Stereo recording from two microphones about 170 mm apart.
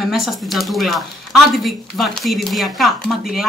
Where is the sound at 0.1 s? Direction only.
Centre (ahead or behind).